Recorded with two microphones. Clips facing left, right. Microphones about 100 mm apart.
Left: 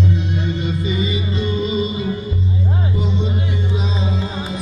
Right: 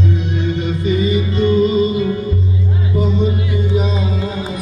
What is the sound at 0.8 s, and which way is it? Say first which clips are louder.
Music: right 5 dB; 45° right (ahead or behind).